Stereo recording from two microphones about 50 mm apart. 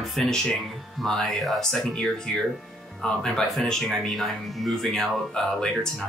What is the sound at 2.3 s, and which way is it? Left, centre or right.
Speech, centre.